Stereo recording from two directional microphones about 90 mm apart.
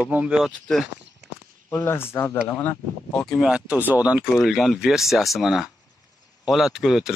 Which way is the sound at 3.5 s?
15° right (ahead or behind).